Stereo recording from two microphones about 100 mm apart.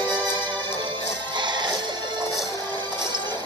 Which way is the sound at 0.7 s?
50° right (ahead or behind).